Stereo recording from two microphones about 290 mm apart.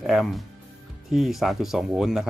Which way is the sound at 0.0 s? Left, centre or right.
Centre.